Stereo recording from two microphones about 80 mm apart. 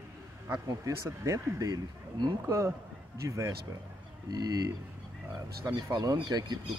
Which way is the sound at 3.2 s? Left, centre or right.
Right.